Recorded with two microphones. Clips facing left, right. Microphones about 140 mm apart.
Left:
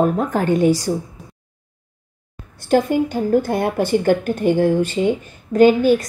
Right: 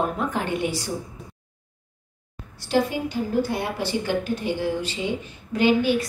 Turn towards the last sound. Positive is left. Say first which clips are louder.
# left 7 dB
turn(degrees=45)  # may be behind; listen again after turning